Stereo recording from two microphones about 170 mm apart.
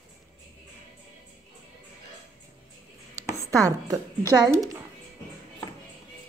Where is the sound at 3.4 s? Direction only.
20° right (ahead or behind).